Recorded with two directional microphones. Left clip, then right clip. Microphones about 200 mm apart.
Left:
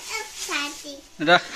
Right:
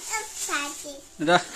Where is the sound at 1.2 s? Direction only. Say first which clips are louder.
Left 3 dB; 10° right (ahead or behind).